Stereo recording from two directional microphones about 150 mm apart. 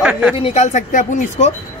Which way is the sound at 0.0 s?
5° right (ahead or behind).